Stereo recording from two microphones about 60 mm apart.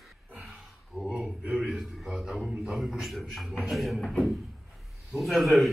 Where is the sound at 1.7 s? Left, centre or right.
Centre.